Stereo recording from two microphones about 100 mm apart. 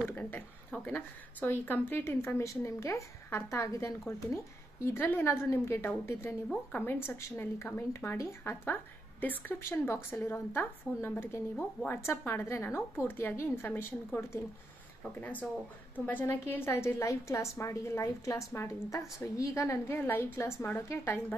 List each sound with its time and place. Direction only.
0.0 s a woman's voice: 15° left (ahead or behind)